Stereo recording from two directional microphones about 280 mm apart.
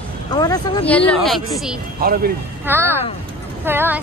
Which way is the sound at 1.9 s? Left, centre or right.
Right.